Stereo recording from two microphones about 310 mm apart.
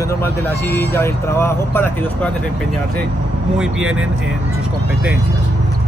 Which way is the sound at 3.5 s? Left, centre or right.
Centre.